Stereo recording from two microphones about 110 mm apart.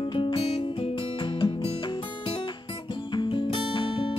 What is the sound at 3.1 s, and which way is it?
Music, 50° left (ahead or behind).